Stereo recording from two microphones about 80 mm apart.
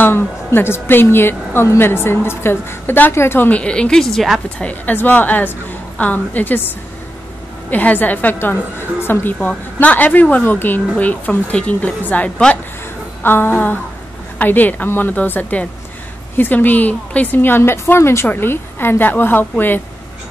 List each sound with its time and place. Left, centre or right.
0.0 s a woman's voice: left; by 4.4 s centre
4.6 s a woman's voice: centre
7.7 s a woman's voice: left
13.2 s a woman's voice: left